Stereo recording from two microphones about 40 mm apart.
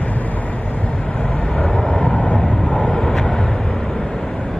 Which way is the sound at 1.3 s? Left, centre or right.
Left.